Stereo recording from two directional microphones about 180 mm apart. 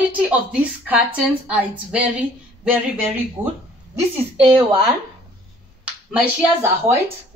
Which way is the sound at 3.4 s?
10° right (ahead or behind).